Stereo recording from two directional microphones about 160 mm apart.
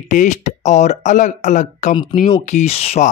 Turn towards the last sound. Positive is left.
turn(degrees=40)  # may be behind; listen again after turning